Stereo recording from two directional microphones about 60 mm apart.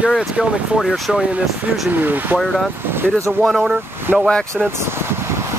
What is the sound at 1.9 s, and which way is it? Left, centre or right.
Speech, right.